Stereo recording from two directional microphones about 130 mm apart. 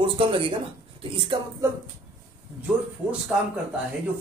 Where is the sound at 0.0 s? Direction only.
45° right (ahead or behind).